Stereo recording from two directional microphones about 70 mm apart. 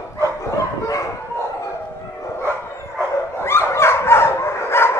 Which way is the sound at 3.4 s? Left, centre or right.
Left.